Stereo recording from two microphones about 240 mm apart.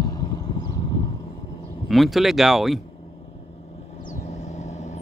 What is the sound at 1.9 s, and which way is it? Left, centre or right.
Speech, centre.